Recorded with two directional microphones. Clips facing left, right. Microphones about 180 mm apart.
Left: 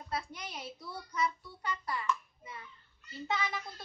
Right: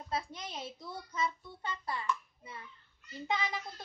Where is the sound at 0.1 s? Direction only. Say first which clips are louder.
Right 1 dB; 25° right (ahead or behind).